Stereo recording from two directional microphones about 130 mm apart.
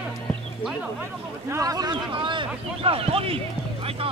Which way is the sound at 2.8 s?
45° right (ahead or behind).